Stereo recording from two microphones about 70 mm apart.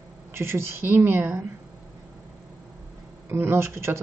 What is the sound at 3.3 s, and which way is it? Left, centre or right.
Speech, right.